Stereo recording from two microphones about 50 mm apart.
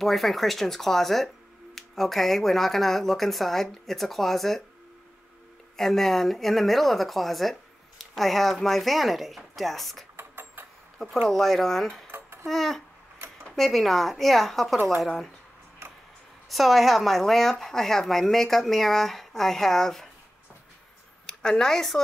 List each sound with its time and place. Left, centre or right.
0.0 s speech: centre
5.8 s speech: centre
10.1 s a sound: right
11.2 s speech: centre
16.4 s speech: centre
21.3 s a woman's voice: centre